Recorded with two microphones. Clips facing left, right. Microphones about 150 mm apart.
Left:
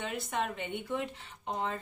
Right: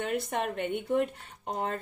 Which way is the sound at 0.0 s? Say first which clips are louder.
Right 4 dB; 60° right (ahead or behind).